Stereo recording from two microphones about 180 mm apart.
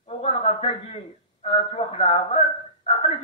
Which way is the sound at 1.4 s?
30° left (ahead or behind).